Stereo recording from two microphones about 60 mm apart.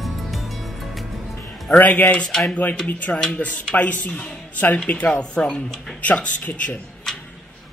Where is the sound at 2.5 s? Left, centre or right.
Left.